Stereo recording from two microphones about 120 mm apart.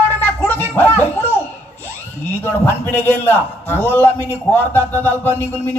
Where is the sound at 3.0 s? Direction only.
15° left (ahead or behind).